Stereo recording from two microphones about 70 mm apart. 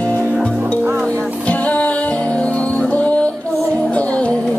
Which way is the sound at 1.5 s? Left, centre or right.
Left.